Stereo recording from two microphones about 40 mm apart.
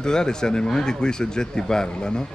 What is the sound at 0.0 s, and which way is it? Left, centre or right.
Speech, centre.